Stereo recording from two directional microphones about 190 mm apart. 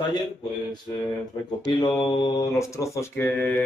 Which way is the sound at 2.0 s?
20° left (ahead or behind).